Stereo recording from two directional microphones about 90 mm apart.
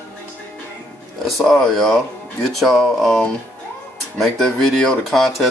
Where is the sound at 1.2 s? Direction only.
Centre (ahead or behind).